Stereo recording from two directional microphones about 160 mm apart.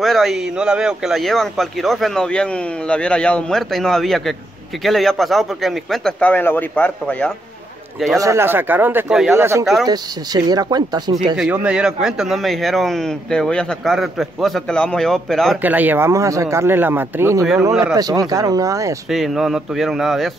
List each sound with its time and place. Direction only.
0.0 s speech: centre (ahead or behind)
8.2 s speech: 15° right (ahead or behind)
9.4 s speech: 15° right (ahead or behind)
11.3 s speech: 5° right (ahead or behind)
15.6 s speech: 10° right (ahead or behind)
19.0 s speech: centre (ahead or behind)